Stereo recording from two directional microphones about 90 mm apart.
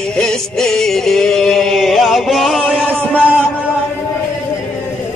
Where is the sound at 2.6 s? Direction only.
15° left (ahead or behind).